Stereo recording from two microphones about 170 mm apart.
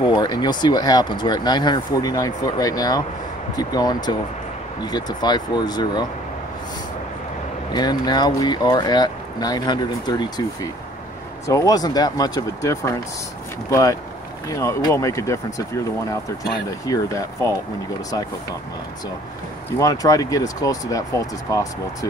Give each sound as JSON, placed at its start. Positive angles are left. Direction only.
{"t": 0.0, "sound": "speech", "side_deg": 25}
{"t": 7.7, "sound": "speech", "side_deg": 25}
{"t": 16.8, "sound": "speech", "side_deg": 20}
{"t": 19.8, "sound": "speech", "side_deg": 20}